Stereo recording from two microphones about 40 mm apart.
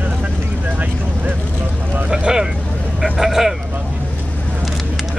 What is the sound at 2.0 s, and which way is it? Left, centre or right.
Vehicle, centre.